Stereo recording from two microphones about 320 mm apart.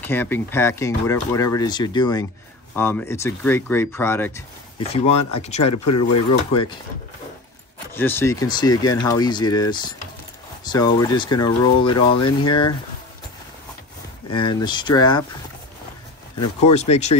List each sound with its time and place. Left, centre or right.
0.0 s speech: centre
5.6 s speech: left
6.5 s speech: centre
7.9 s speech: centre
14.3 s speech: centre
16.6 s speech: centre